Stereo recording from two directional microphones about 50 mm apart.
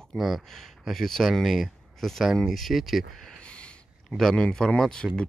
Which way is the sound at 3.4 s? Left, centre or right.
Left.